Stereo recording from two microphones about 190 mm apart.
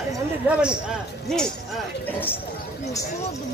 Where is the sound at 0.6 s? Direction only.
5° right (ahead or behind).